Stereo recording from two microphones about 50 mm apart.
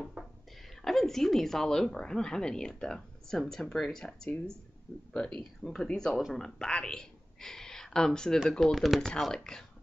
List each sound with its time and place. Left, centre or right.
0.2 s a sound: right
0.8 s speech: centre
9.3 s speech: centre